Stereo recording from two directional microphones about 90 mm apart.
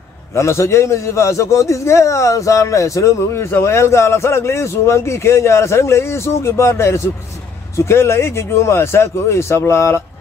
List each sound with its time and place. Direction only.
0.4 s a man's voice: 30° left (ahead or behind)